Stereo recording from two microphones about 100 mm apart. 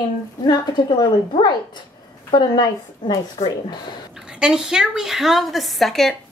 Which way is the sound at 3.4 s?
65° left (ahead or behind).